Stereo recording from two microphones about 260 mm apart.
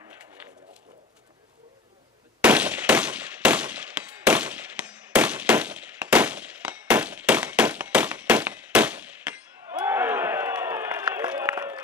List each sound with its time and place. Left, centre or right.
2.4 s a sound: centre
4.2 s firecracker: centre
9.8 s crowd: centre